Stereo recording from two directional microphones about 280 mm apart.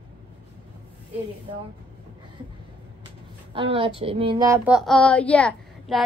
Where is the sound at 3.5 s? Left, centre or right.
Centre.